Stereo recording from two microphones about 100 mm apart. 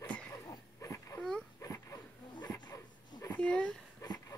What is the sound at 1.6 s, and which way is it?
Dog, 30° left (ahead or behind).